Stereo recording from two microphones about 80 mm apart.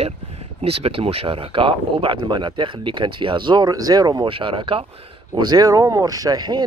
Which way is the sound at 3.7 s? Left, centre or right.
Right.